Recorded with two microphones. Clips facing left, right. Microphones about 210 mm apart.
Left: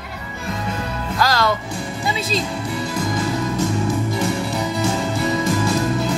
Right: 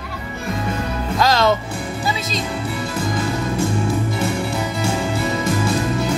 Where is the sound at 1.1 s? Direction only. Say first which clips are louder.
Right 3 dB; 20° right (ahead or behind).